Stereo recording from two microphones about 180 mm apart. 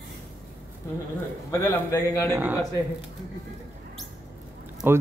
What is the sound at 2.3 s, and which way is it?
Speech, 10° right (ahead or behind).